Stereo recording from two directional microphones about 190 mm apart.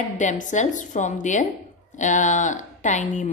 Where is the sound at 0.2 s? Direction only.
40° left (ahead or behind).